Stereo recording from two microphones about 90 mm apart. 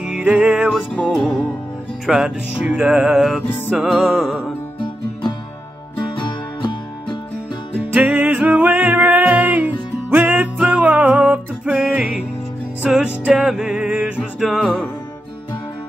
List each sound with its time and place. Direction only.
0.0 s music: 10° right (ahead or behind)
0.9 s music: 5° left (ahead or behind)
4.7 s music: 60° left (ahead or behind)
7.9 s music: 15° right (ahead or behind)
14.4 s music: centre (ahead or behind)